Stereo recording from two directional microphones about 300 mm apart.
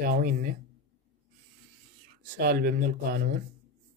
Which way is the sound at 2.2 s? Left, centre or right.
Right.